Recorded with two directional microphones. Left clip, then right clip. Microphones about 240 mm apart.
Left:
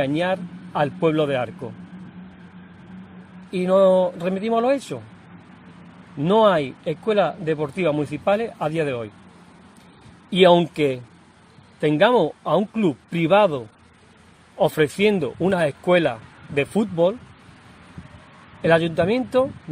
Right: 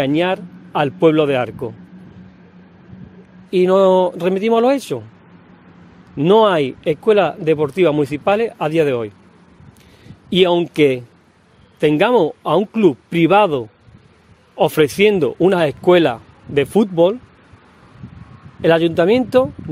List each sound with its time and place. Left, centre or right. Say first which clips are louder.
0.0 s speech: right 5 dB; right
3.5 s speech: right 4 dB; right
6.1 s speech: right 5 dB; right
10.3 s speech: right 1 dB; right
18.6 s speech: right 5 dB; right